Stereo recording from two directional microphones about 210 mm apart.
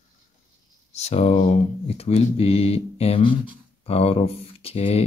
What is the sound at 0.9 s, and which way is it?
Speech, 30° left (ahead or behind).